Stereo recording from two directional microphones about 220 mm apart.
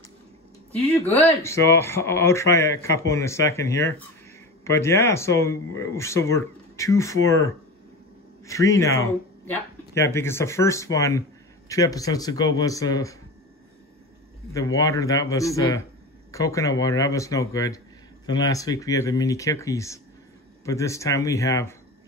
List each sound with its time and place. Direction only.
1.4 s speech: 10° left (ahead or behind)
14.5 s speech: 15° left (ahead or behind)